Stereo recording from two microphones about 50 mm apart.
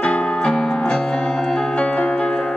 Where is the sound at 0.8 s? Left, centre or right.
Centre.